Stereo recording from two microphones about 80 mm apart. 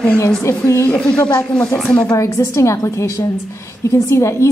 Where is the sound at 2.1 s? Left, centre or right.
Left.